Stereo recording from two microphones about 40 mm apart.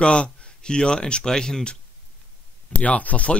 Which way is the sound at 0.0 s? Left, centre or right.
Left.